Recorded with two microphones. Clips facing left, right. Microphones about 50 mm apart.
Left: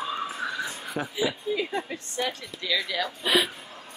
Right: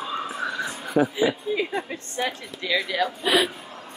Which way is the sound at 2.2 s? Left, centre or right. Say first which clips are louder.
Right 3 dB; right.